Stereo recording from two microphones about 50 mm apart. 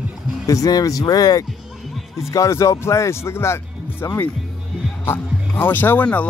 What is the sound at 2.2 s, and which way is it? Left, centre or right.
Speech, left.